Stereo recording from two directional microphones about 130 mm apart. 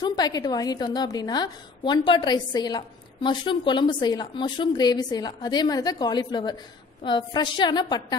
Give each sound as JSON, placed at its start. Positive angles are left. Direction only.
{"t": 0.0, "sound": "a woman's voice", "side_deg": 30}